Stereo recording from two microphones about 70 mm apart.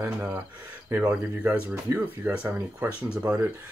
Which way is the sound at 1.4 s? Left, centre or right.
Right.